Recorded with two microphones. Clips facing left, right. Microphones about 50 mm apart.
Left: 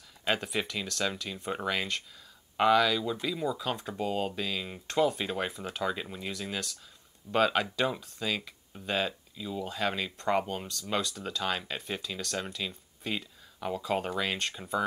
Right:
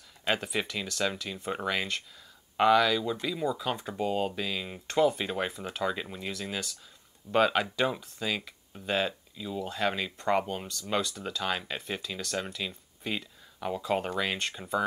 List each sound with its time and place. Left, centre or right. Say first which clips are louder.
0.2 s speech: right 1 dB; centre